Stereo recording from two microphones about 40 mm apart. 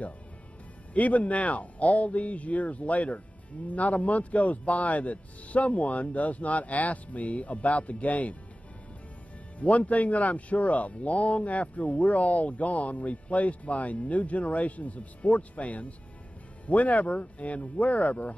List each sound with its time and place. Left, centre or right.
0.9 s a man's voice: left
9.6 s a man's voice: left